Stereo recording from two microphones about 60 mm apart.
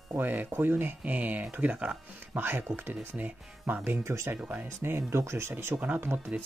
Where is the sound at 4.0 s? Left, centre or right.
Right.